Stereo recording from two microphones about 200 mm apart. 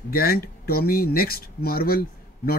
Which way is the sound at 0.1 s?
50° left (ahead or behind).